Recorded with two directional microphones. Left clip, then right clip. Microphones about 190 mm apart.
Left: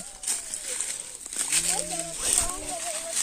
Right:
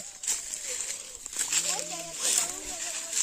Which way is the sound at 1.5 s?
50° left (ahead or behind).